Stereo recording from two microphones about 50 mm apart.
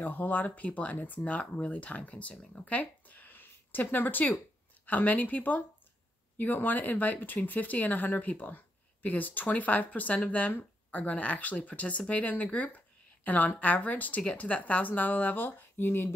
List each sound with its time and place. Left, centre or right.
0.0 s a woman's voice: left